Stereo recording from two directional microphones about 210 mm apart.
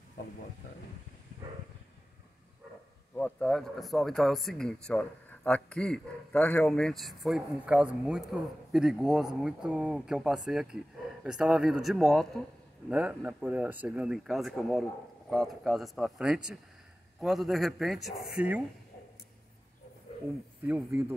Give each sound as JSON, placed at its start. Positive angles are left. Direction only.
{"t": 3.2, "sound": "speech", "side_deg": 5}
{"t": 20.6, "sound": "speech", "side_deg": -10}